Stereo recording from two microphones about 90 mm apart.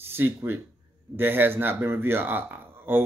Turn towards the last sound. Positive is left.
turn(degrees=-20)  # may be behind; listen again after turning